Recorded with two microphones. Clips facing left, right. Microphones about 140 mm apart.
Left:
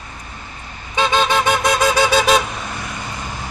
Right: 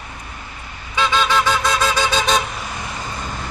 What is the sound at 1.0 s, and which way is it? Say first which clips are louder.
Vehicle: left 2 dB; 50° left (ahead or behind).